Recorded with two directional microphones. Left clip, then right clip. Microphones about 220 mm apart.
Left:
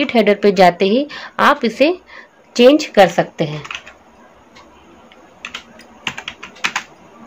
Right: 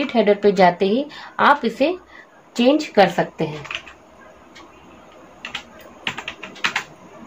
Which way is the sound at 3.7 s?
30° left (ahead or behind).